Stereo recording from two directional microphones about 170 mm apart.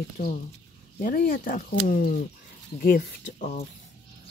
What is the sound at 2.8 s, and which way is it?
Speech, 50° left (ahead or behind).